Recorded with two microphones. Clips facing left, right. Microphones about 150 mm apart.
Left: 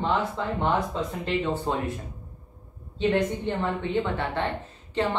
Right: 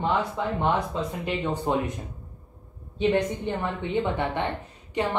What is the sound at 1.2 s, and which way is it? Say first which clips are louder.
Speech: left 3 dB; 15° right (ahead or behind).